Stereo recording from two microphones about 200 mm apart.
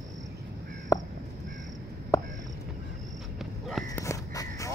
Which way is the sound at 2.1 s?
15° left (ahead or behind).